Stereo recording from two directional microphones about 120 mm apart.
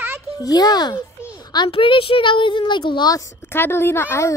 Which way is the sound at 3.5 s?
20° left (ahead or behind).